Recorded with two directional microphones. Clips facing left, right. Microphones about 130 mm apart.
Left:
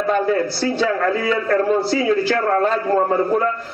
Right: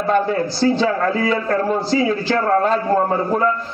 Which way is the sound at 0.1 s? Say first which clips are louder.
Right 1 dB; 30° right (ahead or behind).